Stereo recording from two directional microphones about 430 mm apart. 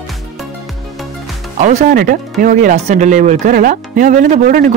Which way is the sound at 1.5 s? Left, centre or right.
Centre.